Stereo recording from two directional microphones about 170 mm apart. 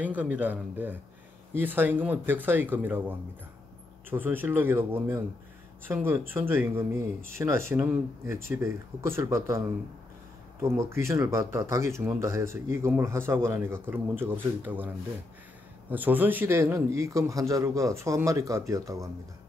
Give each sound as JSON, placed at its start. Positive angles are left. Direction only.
{"t": 0.0, "sound": "speech", "side_deg": -10}
{"t": 10.6, "sound": "speech", "side_deg": -15}
{"t": 15.9, "sound": "speech", "side_deg": -10}